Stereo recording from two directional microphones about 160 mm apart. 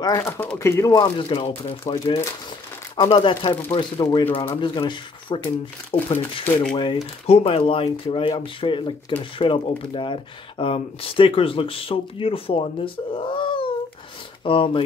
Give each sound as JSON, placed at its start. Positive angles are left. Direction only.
{"t": 0.0, "sound": "speech", "side_deg": 20}
{"t": 1.0, "sound": "speech", "side_deg": 30}